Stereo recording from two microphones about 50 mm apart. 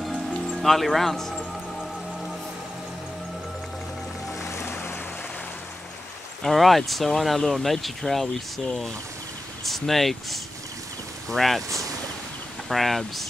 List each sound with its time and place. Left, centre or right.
0.6 s speech: centre
4.4 s music: left
6.4 s speech: centre
9.7 s speech: centre